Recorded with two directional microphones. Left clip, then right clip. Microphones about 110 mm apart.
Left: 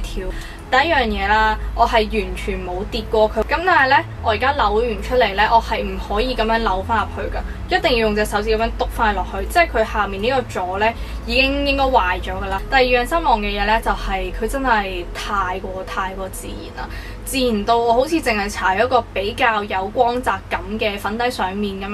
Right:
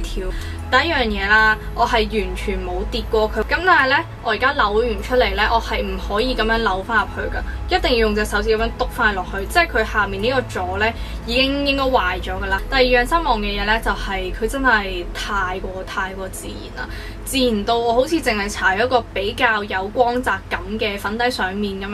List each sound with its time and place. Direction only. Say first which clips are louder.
0.7 s a woman's voice: left 1 dB; 15° right (ahead or behind)
17.4 s a woman's voice: left 1 dB; 15° right (ahead or behind)